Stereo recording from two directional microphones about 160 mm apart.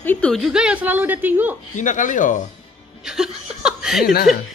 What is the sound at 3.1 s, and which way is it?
Laughter, 5° right (ahead or behind).